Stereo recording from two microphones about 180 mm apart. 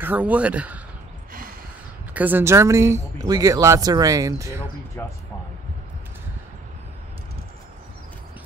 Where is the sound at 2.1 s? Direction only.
10° right (ahead or behind).